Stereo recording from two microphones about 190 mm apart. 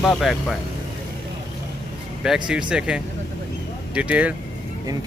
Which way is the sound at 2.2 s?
5° right (ahead or behind).